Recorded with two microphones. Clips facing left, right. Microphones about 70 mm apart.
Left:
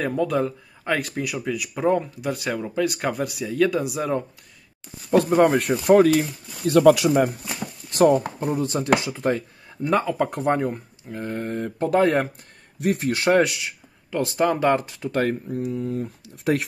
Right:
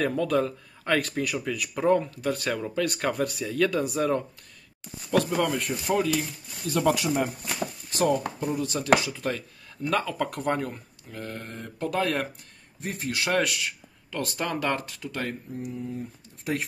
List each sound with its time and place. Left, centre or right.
0.0 s speech: centre
5.1 s speech: left
5.6 s speech: left
7.9 s speech: left
12.7 s speech: left
13.2 s speech: left
15.2 s speech: left